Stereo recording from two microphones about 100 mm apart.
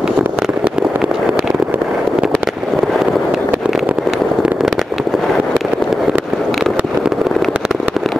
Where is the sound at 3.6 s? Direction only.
5° right (ahead or behind).